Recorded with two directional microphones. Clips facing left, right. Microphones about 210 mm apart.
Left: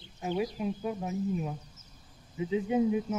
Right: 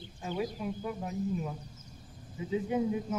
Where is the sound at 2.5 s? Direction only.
20° left (ahead or behind).